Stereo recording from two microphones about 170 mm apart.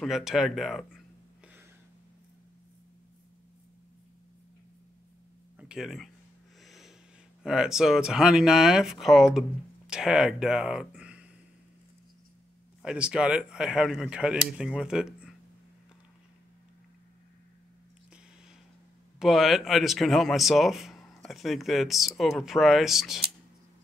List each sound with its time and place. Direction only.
0.0 s speech: centre (ahead or behind)
5.6 s a sound: 5° right (ahead or behind)
6.6 s snort: centre (ahead or behind)
7.4 s speech: 5° right (ahead or behind)
12.8 s speech: 5° right (ahead or behind)
19.1 s speech: centre (ahead or behind)